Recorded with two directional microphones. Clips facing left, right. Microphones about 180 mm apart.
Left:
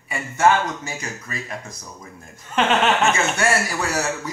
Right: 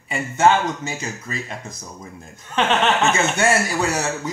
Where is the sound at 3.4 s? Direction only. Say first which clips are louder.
Right 2 dB; 20° right (ahead or behind).